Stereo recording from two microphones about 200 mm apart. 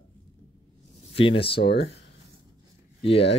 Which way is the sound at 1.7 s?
55° left (ahead or behind).